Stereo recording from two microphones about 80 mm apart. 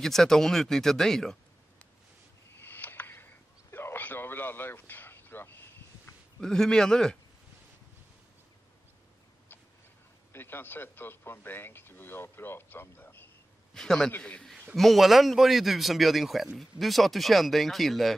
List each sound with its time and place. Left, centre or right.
0.0 s a man's voice: centre
2.5 s a sound: left
6.4 s a man's voice: centre
10.3 s speech: left
13.7 s a man's voice: centre
14.8 s a man's voice: centre